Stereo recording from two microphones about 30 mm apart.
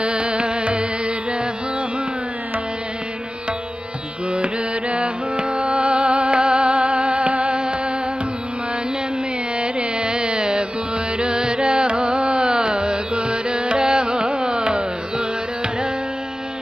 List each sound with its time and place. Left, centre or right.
0.0 s carnatic music: right
4.3 s carnatic music: right
5.6 s music: right
9.6 s carnatic music: right
10.0 s carnatic music: right